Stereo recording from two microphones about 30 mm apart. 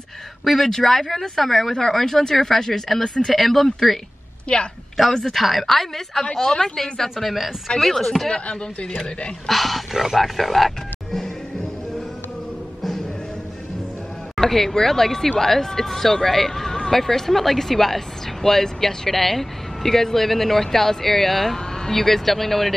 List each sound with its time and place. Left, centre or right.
0.7 s speech: centre
4.5 s a woman's voice: left
4.9 s speech: centre
5.3 s speech: centre
7.8 s speech: centre
9.5 s speech: centre
14.3 s speech: centre